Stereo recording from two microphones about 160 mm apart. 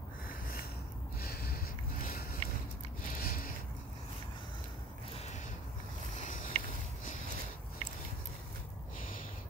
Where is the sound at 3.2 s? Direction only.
65° left (ahead or behind).